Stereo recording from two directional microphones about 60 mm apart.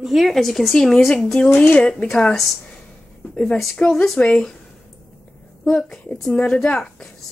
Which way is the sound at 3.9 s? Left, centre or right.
Centre.